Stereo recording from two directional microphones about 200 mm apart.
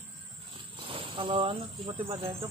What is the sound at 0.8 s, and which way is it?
Cricket, 25° right (ahead or behind).